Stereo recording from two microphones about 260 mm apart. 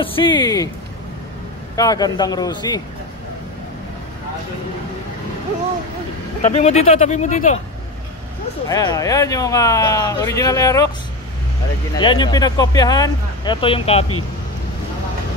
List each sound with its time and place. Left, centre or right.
0.0 s speech: centre
1.8 s speech: centre
6.4 s speech: left
8.6 s speech: centre
11.9 s speech: centre